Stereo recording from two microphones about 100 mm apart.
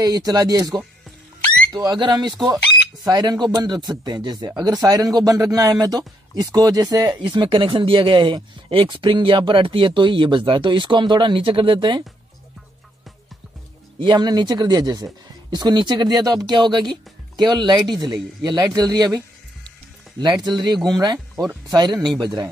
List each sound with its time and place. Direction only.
0.0 s speech: 40° right (ahead or behind)
7.3 s speech: 55° right (ahead or behind)
13.9 s speech: 50° right (ahead or behind)